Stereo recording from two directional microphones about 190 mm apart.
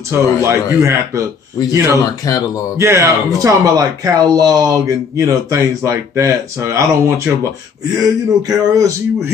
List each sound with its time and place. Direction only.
0.1 s speech: 15° right (ahead or behind)
2.2 s speech: 20° left (ahead or behind)
2.8 s speech: 15° right (ahead or behind)